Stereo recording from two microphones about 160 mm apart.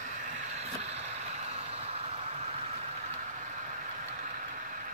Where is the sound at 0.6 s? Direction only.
40° right (ahead or behind).